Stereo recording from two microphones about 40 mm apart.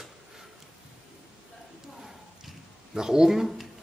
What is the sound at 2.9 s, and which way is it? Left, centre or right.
Speech, centre.